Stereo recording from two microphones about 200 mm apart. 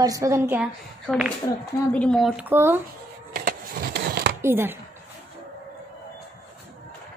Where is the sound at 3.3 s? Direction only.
50° right (ahead or behind).